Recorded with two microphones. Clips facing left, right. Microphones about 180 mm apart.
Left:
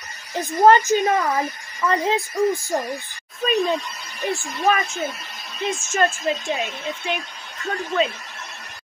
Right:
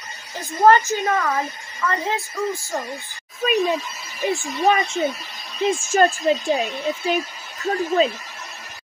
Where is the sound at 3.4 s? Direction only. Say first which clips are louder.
Right 1 dB; centre (ahead or behind).